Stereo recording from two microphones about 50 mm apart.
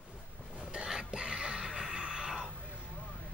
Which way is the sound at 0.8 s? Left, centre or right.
Centre.